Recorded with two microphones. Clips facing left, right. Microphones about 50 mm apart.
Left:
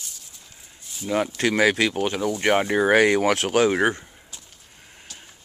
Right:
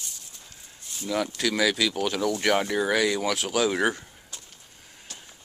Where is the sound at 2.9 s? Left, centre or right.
Left.